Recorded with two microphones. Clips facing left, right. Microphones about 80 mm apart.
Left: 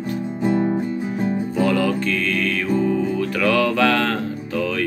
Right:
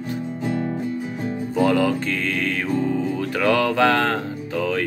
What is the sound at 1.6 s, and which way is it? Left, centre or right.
Music, right.